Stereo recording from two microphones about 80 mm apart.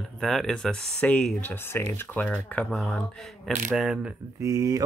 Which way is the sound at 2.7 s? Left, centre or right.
Centre.